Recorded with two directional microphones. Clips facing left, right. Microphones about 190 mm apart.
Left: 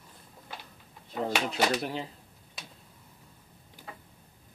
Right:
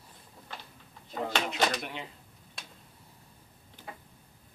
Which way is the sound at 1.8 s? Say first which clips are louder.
Left 6 dB; 35° left (ahead or behind).